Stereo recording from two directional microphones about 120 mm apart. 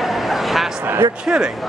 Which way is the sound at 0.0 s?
Centre (ahead or behind).